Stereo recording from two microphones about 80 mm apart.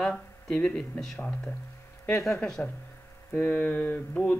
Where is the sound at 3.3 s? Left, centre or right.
Left.